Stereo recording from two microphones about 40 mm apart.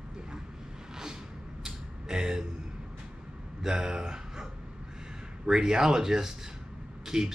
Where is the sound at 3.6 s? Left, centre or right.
Centre.